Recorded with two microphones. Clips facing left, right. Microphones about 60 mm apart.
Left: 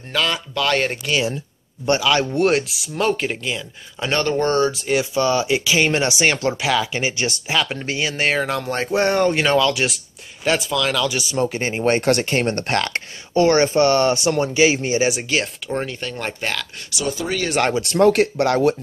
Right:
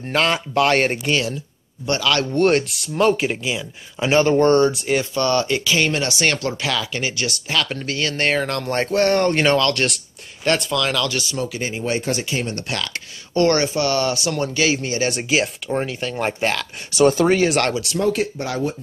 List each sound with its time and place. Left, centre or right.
0.1 s speech: right
2.0 s speech: centre
5.1 s speech: centre
7.4 s speech: centre
11.1 s speech: centre
11.3 s speech: left
13.3 s speech: centre
13.7 s speech: left
15.2 s speech: centre
16.9 s speech: right
17.9 s speech: left